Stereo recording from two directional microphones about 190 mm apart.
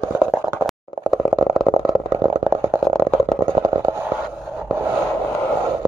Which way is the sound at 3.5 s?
20° right (ahead or behind).